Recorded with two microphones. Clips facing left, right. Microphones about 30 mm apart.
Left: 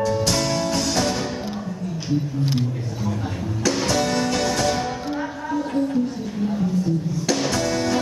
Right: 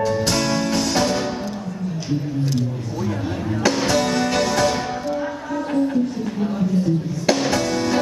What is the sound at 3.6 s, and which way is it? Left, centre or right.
Music, centre.